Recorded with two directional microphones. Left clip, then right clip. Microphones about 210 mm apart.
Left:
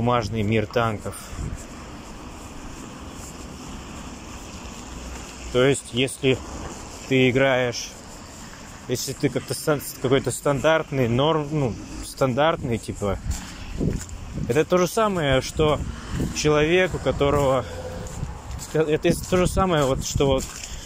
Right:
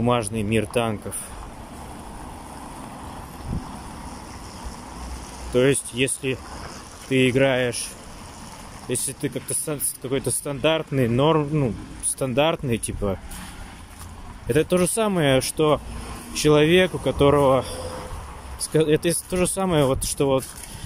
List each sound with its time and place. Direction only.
0.0 s speech: 20° right (ahead or behind)
5.5 s speech: 20° right (ahead or behind)
14.5 s speech: 20° right (ahead or behind)